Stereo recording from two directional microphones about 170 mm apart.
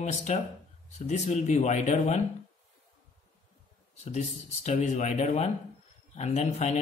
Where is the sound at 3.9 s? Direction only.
40° left (ahead or behind).